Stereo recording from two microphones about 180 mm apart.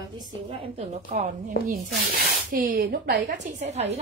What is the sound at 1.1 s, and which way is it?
A woman's voice, 45° right (ahead or behind).